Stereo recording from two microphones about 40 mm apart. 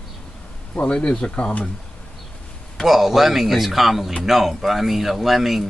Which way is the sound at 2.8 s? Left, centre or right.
Centre.